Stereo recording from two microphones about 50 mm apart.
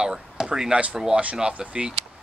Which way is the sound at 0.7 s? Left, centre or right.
Right.